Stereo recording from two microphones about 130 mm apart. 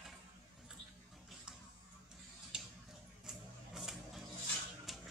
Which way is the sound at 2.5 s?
5° right (ahead or behind).